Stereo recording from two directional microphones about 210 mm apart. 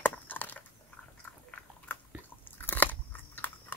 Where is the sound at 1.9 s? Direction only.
10° left (ahead or behind).